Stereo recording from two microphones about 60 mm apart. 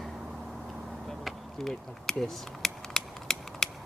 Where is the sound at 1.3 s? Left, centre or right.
Centre.